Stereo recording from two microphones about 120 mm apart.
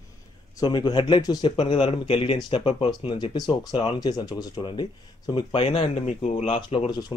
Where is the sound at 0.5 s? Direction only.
35° left (ahead or behind).